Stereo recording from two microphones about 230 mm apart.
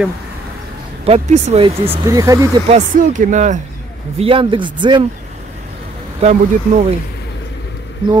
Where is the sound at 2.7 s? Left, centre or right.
Right.